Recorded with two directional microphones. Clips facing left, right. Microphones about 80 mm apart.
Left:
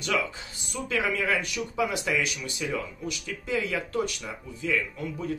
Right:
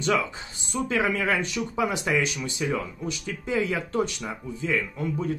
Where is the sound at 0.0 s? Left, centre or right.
Right.